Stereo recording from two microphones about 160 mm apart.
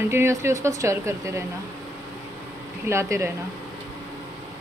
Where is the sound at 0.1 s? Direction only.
15° right (ahead or behind).